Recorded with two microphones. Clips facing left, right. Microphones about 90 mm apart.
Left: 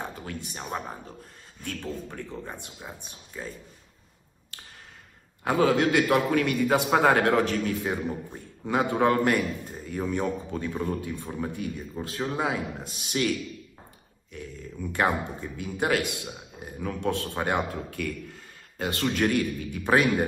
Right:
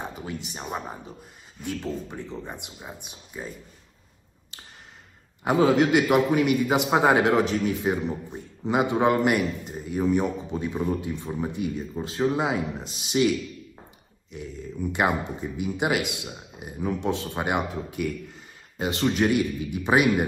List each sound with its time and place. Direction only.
0.0 s a man's voice: 15° right (ahead or behind)
5.4 s a man's voice: 20° right (ahead or behind)
14.3 s a man's voice: 15° right (ahead or behind)